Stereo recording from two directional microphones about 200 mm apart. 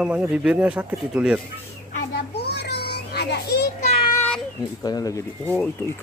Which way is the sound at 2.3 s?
55° left (ahead or behind).